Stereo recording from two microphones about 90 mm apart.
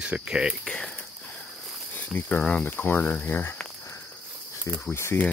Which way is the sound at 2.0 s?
20° left (ahead or behind).